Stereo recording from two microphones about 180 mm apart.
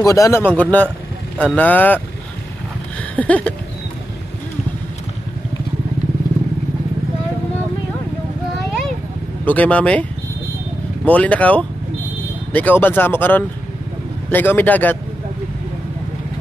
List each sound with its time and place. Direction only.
0.0 s speech: 15° left (ahead or behind)
3.2 s speech: 10° left (ahead or behind)
9.4 s speech: 10° left (ahead or behind)
11.1 s speech: 10° left (ahead or behind)